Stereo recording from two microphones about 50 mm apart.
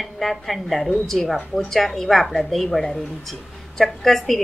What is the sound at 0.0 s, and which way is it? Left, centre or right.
A woman's voice, centre.